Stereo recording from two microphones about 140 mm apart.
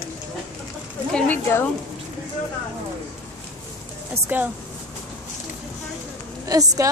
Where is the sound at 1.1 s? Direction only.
15° left (ahead or behind).